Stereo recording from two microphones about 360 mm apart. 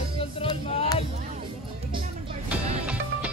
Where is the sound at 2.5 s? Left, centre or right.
Centre.